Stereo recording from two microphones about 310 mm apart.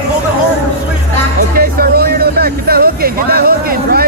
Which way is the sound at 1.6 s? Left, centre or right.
Right.